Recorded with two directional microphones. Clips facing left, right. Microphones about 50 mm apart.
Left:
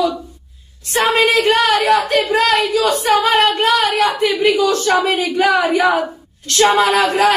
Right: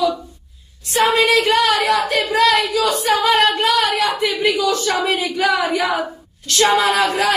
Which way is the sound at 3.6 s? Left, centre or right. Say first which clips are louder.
Left 2 dB; left.